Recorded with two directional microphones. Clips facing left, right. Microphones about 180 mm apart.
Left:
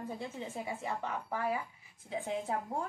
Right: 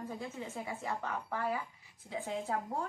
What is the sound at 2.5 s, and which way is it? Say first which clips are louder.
Speech: right 1 dB; 20° left (ahead or behind).